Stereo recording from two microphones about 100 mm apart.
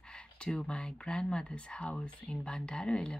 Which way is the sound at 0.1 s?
5° left (ahead or behind).